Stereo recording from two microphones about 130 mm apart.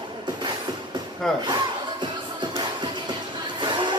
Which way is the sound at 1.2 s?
5° left (ahead or behind).